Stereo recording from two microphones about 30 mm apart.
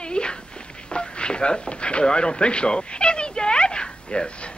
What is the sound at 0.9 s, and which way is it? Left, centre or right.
A man's voice, left.